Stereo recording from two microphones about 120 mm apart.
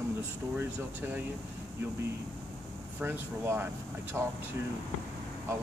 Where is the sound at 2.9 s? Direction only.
20° right (ahead or behind).